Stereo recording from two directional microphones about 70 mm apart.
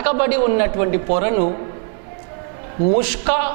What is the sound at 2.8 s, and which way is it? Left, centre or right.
Speech, centre.